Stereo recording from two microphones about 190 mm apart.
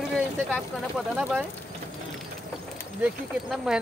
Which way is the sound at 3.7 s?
5° right (ahead or behind).